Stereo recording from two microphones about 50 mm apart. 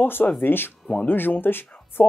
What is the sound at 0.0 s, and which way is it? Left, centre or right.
Speech, left.